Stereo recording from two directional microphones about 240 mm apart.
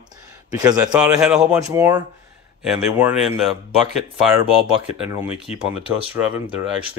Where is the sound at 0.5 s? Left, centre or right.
Centre.